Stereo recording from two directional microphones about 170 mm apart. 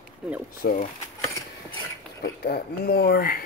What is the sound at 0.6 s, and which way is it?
Speech, 60° left (ahead or behind).